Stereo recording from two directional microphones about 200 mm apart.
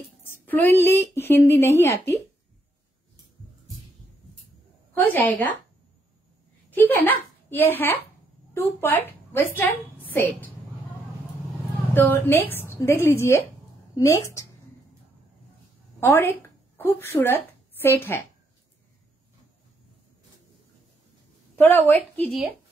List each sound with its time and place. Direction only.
0.2 s speech: 10° left (ahead or behind)
4.9 s speech: 10° left (ahead or behind)
6.7 s a woman's voice: 10° left (ahead or behind)
11.9 s speech: 10° left (ahead or behind)
16.0 s speech: 10° left (ahead or behind)
21.5 s speech: 10° left (ahead or behind)